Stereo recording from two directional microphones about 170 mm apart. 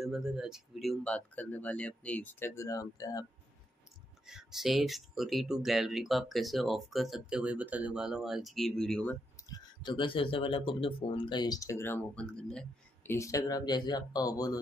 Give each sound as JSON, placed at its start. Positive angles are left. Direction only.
{"t": 0.0, "sound": "speech", "side_deg": 0}
{"t": 4.3, "sound": "speech", "side_deg": -5}
{"t": 9.5, "sound": "speech", "side_deg": 25}